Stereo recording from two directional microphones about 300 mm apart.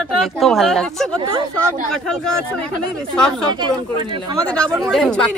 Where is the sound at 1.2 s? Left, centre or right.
Centre.